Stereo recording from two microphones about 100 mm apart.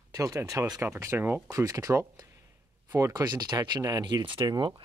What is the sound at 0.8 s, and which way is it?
Speech, 25° right (ahead or behind).